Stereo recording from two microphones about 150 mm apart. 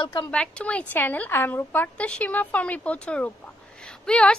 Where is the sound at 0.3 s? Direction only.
10° left (ahead or behind).